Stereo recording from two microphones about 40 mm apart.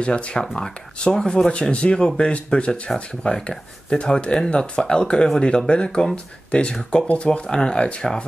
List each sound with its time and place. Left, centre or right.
0.0 s speech: left